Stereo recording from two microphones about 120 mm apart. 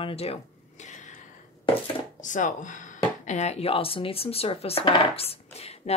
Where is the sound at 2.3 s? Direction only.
90° left.